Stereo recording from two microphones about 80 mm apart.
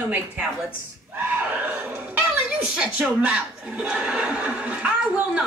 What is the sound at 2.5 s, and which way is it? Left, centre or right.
Speech, centre.